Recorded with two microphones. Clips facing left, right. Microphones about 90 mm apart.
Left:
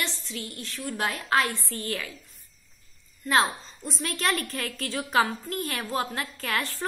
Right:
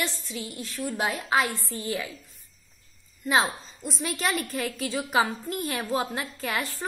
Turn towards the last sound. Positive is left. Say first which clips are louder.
# even
turn(degrees=-5)  # may be behind; listen again after turning